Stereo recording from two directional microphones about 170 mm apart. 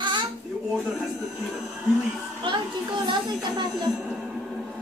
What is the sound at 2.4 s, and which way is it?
Speech, 25° right (ahead or behind).